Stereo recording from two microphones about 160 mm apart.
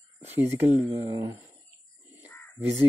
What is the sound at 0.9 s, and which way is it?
Speech, 20° right (ahead or behind).